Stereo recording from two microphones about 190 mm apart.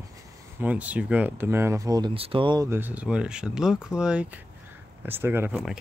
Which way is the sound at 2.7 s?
10° right (ahead or behind).